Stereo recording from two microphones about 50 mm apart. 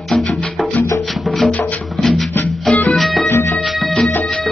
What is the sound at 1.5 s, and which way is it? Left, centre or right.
Music, left.